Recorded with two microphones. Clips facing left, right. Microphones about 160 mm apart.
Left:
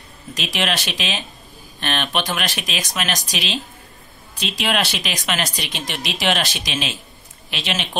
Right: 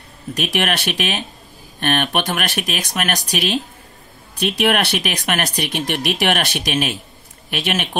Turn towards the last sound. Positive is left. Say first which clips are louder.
# right 3 dB
turn(degrees=-55)  # may be behind; listen again after turning